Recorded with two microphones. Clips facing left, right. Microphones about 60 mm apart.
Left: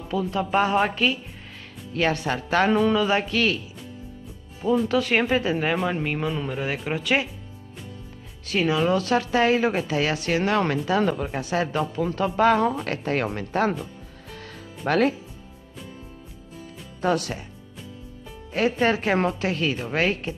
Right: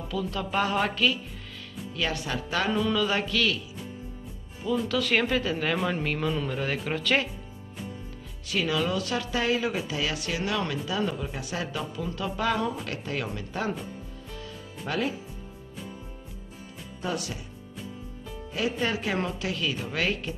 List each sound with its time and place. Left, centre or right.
0.1 s a woman's voice: left
2.0 s speech: left
3.0 s a woman's voice: left
4.8 s a woman's voice: left
8.5 s a woman's voice: left
14.9 s speech: left
17.0 s speech: left
18.5 s speech: left